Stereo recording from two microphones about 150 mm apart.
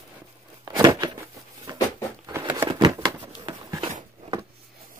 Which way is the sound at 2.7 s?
30° right (ahead or behind).